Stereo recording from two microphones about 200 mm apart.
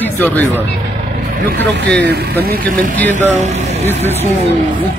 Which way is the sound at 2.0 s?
55° right (ahead or behind).